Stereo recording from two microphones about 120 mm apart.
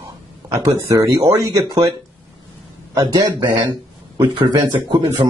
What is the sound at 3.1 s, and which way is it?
Speech, 30° right (ahead or behind).